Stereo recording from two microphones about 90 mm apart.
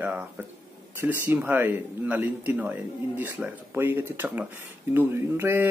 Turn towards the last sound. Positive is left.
turn(degrees=-25)  # may be behind; listen again after turning